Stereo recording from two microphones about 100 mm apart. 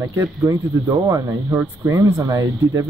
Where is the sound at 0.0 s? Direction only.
30° right (ahead or behind).